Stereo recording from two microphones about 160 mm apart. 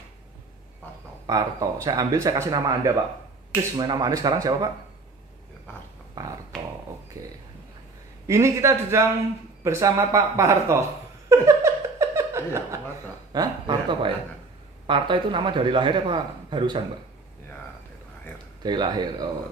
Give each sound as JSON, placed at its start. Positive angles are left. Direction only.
{"t": 0.8, "sound": "a sound", "side_deg": 10}
{"t": 1.2, "sound": "speech", "side_deg": -25}
{"t": 6.2, "sound": "speech", "side_deg": -20}
{"t": 8.3, "sound": "speech", "side_deg": -20}
{"t": 11.2, "sound": "laughter", "side_deg": -20}
{"t": 13.3, "sound": "a man's voice", "side_deg": -25}
{"t": 18.6, "sound": "speech", "side_deg": -25}